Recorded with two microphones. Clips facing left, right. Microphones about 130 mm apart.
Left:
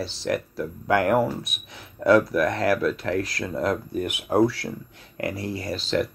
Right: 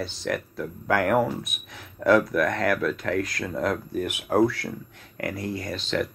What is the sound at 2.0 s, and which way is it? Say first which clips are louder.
Speech: left 1 dB; 30° left (ahead or behind).